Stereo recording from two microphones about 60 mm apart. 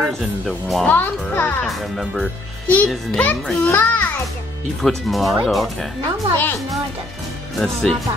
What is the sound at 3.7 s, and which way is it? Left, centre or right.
Speech, left.